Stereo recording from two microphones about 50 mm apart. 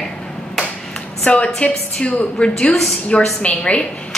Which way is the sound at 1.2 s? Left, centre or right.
Left.